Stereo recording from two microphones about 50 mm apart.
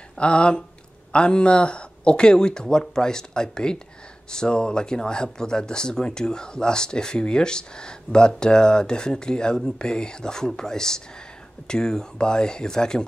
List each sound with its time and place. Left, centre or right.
0.2 s speech: left